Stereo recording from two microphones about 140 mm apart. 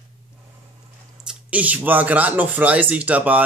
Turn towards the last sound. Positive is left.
turn(degrees=-10)  # may be behind; listen again after turning